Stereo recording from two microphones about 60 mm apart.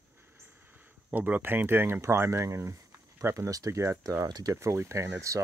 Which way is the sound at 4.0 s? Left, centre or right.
Right.